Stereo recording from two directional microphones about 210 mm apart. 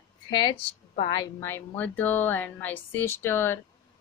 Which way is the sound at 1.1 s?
15° left (ahead or behind).